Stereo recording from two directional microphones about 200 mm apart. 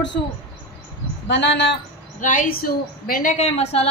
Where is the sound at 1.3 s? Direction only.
60° left (ahead or behind).